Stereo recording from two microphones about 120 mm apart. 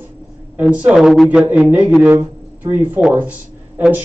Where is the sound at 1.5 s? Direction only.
15° right (ahead or behind).